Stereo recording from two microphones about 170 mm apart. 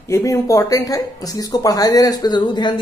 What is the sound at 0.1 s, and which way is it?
A woman's voice, 20° left (ahead or behind).